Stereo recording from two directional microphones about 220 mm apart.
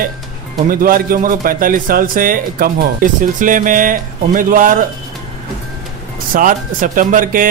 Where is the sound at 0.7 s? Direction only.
40° right (ahead or behind).